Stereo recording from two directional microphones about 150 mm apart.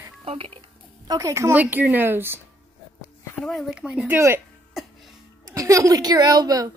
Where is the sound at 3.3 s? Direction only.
5° left (ahead or behind).